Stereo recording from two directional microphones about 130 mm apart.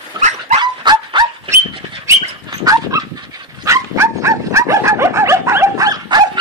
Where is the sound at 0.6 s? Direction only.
35° right (ahead or behind).